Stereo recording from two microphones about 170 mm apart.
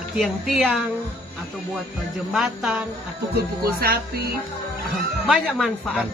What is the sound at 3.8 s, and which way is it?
Music, 60° right (ahead or behind).